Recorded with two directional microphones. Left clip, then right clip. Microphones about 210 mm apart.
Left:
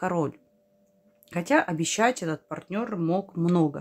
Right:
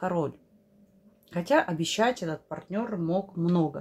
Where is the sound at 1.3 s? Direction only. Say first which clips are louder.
Left 1 dB; 20° left (ahead or behind).